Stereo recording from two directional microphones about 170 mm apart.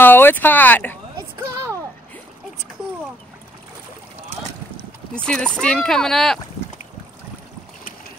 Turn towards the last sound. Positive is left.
turn(degrees=0)  # may be behind; listen again after turning